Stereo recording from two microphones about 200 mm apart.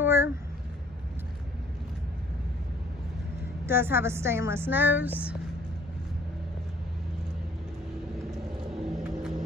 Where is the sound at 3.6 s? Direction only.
10° right (ahead or behind).